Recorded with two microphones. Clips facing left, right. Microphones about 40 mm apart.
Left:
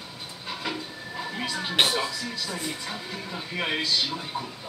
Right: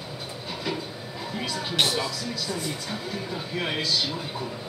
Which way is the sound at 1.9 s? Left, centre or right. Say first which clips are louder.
Even; centre.